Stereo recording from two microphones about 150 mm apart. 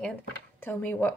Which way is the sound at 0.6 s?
15° left (ahead or behind).